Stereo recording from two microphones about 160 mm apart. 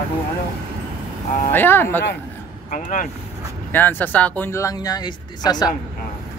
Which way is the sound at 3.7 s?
10° left (ahead or behind).